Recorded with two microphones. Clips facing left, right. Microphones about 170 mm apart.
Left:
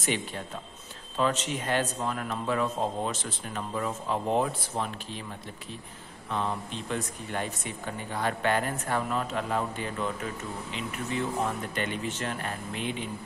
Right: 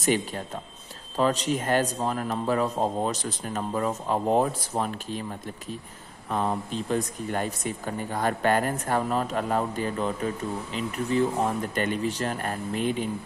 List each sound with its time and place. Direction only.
0.0 s speech: 40° right (ahead or behind)
6.3 s speech: 45° right (ahead or behind)